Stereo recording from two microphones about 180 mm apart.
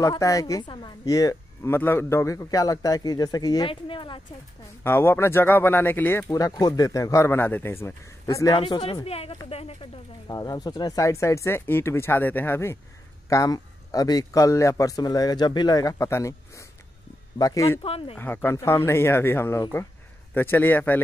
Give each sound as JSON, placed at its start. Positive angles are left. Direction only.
{"t": 0.0, "sound": "speech", "side_deg": 20}
{"t": 4.8, "sound": "speech", "side_deg": 10}
{"t": 8.5, "sound": "speech", "side_deg": 30}
{"t": 10.2, "sound": "speech", "side_deg": 20}
{"t": 17.8, "sound": "speech", "side_deg": 30}
{"t": 18.1, "sound": "speech", "side_deg": 10}